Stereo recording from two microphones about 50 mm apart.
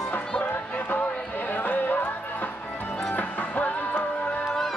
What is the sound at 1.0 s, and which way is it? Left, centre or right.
Music, left.